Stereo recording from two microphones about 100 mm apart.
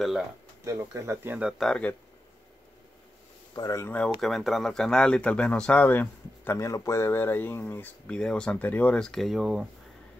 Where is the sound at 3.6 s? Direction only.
35° left (ahead or behind).